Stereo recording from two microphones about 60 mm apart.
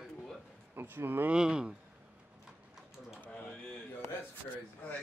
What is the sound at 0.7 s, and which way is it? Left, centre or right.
Speech, right.